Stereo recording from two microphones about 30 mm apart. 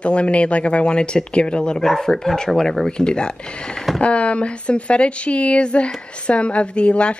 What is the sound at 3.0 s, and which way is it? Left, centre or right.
Speech, left.